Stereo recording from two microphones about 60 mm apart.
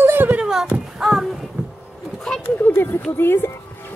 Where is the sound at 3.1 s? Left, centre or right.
Left.